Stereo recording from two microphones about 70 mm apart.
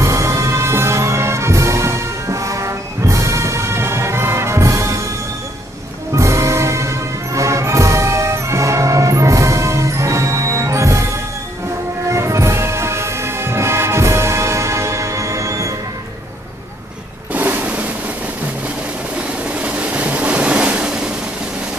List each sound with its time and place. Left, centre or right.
0.0 s music: right
6.1 s music: right
17.3 s vehicle: right
19.5 s vehicle: centre